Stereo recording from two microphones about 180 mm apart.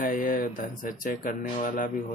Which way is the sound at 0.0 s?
45° left (ahead or behind).